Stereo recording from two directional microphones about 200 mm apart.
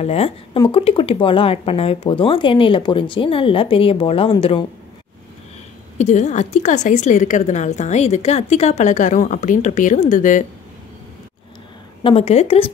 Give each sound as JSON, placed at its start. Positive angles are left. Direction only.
{"t": 0.0, "sound": "speech", "side_deg": 30}
{"t": 5.9, "sound": "a woman's voice", "side_deg": 35}
{"t": 12.0, "sound": "speech", "side_deg": 30}